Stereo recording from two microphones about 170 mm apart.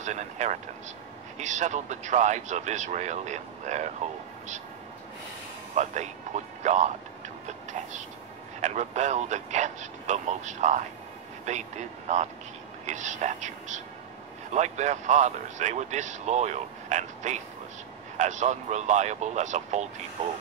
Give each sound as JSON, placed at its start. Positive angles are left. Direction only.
{"t": 0.0, "sound": "speech", "side_deg": -45}
{"t": 5.8, "sound": "speech", "side_deg": -45}
{"t": 7.4, "sound": "train", "side_deg": -45}
{"t": 8.5, "sound": "speech", "side_deg": -45}